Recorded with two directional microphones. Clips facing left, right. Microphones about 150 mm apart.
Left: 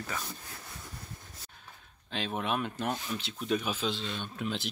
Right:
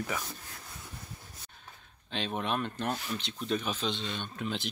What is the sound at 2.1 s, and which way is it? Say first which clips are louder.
Speech: even; 5° left (ahead or behind).